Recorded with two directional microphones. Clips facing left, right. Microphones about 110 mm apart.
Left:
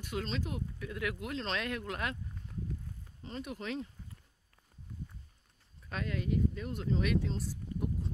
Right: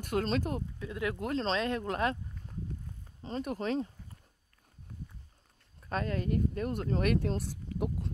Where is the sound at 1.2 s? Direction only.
40° right (ahead or behind).